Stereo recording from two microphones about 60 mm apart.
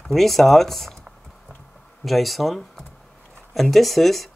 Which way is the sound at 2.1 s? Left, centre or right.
Centre.